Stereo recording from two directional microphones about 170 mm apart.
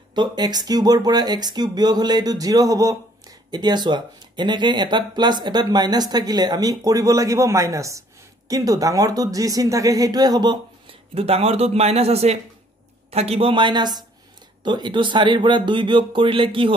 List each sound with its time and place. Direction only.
0.1 s speech: 25° right (ahead or behind)
11.1 s speech: 35° right (ahead or behind)